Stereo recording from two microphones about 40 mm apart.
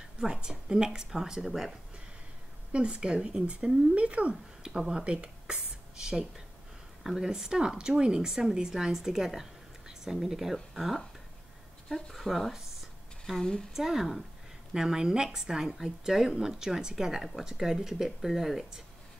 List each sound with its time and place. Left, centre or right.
0.2 s speech: centre
2.7 s speech: right
3.9 s speech: right
4.6 s speech: centre
5.0 s a woman's voice: right; by 12.5 s centre
13.4 s speech: centre
13.7 s speech: centre